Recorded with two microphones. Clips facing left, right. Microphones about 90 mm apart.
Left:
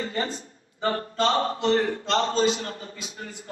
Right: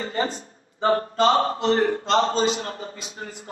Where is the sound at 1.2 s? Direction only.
40° right (ahead or behind).